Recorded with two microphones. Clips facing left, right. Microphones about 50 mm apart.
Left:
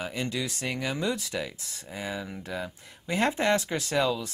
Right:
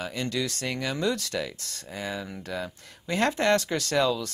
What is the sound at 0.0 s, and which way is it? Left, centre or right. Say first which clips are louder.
Speech: right 2 dB; centre.